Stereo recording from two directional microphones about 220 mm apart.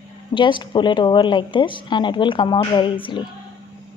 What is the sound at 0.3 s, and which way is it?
A woman's voice, 20° left (ahead or behind).